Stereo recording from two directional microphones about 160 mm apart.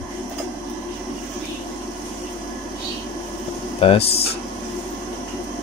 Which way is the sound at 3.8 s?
35° left (ahead or behind).